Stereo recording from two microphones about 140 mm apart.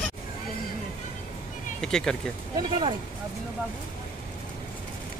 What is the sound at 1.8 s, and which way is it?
Speech, 5° left (ahead or behind).